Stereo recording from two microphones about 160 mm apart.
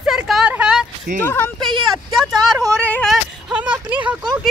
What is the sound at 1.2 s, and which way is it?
Speech, 15° left (ahead or behind).